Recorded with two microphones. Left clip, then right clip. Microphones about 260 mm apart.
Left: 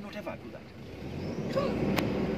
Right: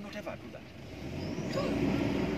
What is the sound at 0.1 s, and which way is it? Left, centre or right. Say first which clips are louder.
Vehicle: left 2 dB; centre.